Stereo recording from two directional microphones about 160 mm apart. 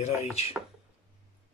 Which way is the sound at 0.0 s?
45° left (ahead or behind).